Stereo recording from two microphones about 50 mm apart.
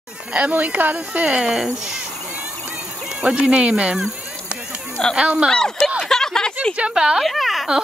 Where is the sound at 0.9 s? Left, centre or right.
Right.